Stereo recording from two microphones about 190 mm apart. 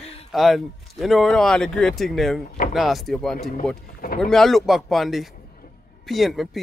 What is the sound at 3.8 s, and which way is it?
Speech, 50° left (ahead or behind).